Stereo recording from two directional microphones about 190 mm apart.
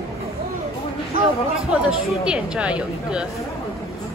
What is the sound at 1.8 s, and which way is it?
A woman's voice, 5° right (ahead or behind).